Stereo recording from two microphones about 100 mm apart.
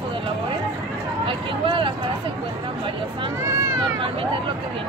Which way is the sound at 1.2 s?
60° right (ahead or behind).